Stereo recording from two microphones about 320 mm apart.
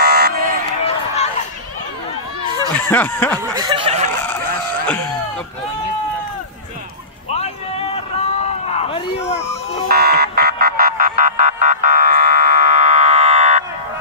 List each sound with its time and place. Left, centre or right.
0.0 s a sound: right
0.8 s run: centre
2.9 s snicker: centre
3.5 s snicker: centre
4.8 s chicken: centre
7.3 s a sound: centre
9.8 s car alarm: right